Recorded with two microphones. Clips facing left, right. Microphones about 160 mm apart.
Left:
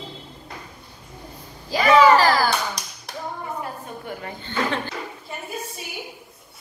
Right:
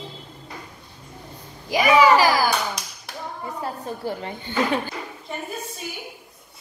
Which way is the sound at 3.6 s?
30° right (ahead or behind).